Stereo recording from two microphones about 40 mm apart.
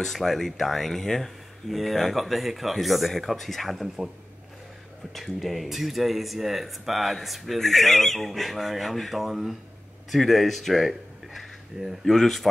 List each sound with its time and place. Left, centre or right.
0.0 s speech: centre
5.1 s speech: centre